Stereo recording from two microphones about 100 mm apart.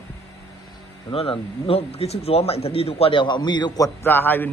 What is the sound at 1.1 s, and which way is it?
A man's voice, 70° left (ahead or behind).